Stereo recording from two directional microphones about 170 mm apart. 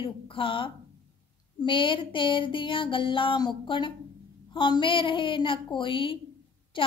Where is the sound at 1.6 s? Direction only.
30° left (ahead or behind).